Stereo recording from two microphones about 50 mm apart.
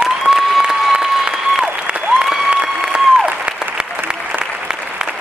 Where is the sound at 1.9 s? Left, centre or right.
Right.